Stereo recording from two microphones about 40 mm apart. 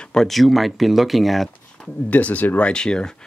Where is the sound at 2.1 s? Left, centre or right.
Left.